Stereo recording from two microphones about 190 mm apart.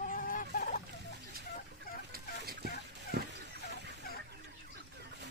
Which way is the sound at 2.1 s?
55° right (ahead or behind).